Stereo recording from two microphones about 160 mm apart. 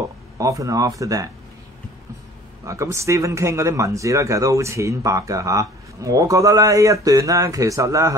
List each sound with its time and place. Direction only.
0.4 s speech: 20° right (ahead or behind)
2.6 s speech: 20° right (ahead or behind)